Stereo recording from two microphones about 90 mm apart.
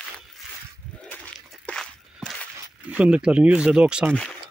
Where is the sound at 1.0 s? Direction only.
20° left (ahead or behind).